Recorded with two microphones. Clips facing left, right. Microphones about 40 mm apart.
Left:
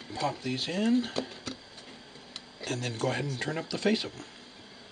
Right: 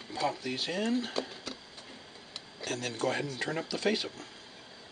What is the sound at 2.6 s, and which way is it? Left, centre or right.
Speech, centre.